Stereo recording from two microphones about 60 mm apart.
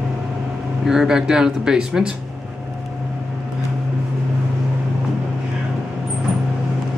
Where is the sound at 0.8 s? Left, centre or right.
Centre.